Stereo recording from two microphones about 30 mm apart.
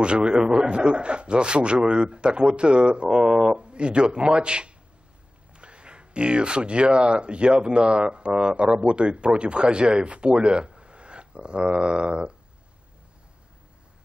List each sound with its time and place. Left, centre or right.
0.0 s speech: right